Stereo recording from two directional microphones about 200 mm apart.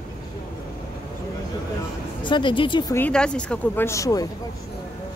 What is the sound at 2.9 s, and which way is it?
Speech, 5° left (ahead or behind).